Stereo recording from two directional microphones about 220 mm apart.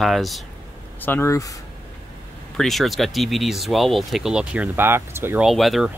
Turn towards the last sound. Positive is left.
turn(degrees=0)  # may be behind; listen again after turning